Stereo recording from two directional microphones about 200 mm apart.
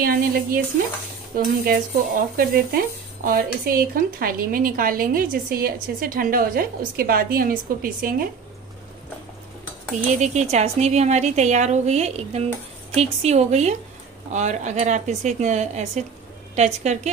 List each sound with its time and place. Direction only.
0.0 s speech: 45° right (ahead or behind)
10.1 s a woman's voice: 35° right (ahead or behind)